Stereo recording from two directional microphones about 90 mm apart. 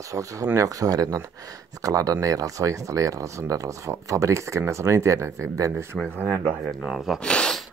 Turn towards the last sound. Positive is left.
turn(degrees=10)  # may be behind; listen again after turning